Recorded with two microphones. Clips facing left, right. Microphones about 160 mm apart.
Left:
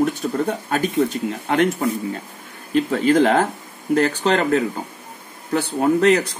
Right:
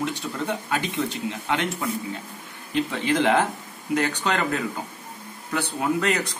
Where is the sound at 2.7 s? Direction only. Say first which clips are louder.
Left 7 dB; 45° left (ahead or behind).